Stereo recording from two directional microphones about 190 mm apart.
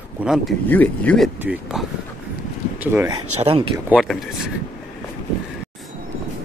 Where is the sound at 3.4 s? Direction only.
30° right (ahead or behind).